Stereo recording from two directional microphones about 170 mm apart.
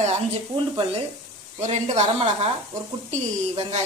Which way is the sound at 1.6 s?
40° right (ahead or behind).